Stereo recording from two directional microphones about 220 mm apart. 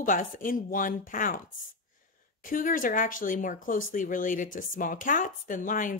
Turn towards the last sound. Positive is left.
turn(degrees=35)  # may be behind; listen again after turning